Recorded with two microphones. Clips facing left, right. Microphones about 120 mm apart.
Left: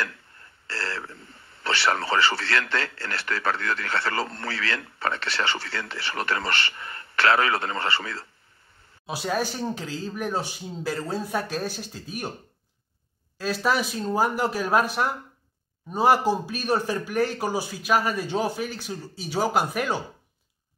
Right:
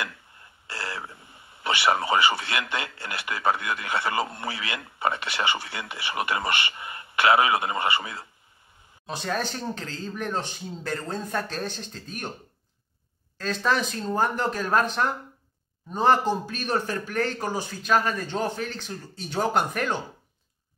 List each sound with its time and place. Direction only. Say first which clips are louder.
0.0 s speech: left 2 dB; 20° right (ahead or behind)
9.0 s speech: left 2 dB; 10° left (ahead or behind)
13.4 s speech: left 1 dB; 10° left (ahead or behind)